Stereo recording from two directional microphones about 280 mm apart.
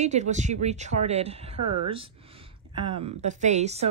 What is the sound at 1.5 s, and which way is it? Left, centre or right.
Speech, right.